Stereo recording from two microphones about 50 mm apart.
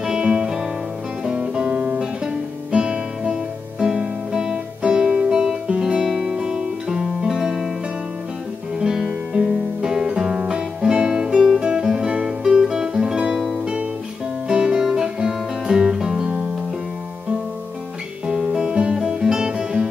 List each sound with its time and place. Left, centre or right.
0.0 s music: centre
1.2 s guitar: centre
2.7 s music: centre
8.7 s music: centre
11.6 s guitar: centre
14.5 s music: centre
18.2 s music: centre